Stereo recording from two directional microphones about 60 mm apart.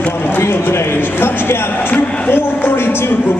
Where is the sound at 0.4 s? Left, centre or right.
Left.